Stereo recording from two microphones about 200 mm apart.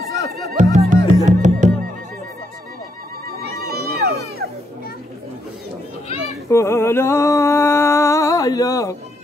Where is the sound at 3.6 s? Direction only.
50° right (ahead or behind).